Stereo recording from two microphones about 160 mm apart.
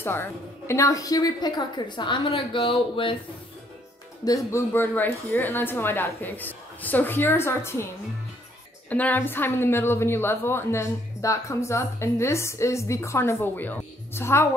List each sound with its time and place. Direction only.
0.0 s a woman's voice: 15° left (ahead or behind); by 3.2 s 35° left (ahead or behind)
4.2 s a woman's voice: 20° left (ahead or behind)
8.8 s a woman's voice: 10° left (ahead or behind)